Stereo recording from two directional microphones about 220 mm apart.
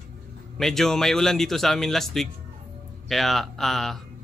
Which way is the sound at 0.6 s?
Centre (ahead or behind).